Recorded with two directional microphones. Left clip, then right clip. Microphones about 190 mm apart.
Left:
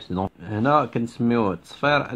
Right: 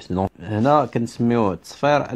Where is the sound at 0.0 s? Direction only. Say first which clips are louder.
Right 4 dB; 40° right (ahead or behind).